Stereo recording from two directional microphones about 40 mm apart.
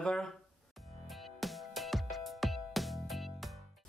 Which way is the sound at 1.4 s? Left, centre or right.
Centre.